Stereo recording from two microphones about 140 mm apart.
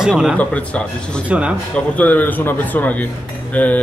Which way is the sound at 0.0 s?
5° right (ahead or behind).